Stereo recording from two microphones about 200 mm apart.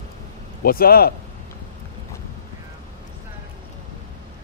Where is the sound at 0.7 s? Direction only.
50° left (ahead or behind).